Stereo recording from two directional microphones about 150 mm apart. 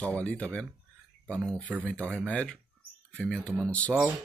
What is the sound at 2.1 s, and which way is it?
Speech, 5° left (ahead or behind).